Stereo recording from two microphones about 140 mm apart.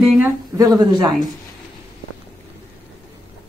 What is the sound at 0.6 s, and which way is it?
Speech, 30° right (ahead or behind).